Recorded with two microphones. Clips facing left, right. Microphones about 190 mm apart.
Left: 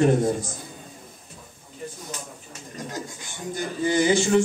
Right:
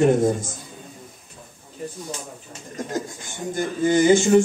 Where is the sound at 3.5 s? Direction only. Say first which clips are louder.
Right 4 dB; 50° right (ahead or behind).